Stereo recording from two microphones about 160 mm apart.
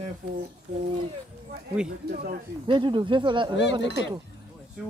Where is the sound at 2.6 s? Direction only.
30° right (ahead or behind).